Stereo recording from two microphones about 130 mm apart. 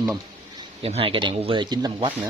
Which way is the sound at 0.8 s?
50° right (ahead or behind).